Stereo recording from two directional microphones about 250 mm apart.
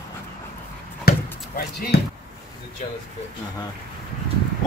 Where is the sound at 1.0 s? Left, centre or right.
Left.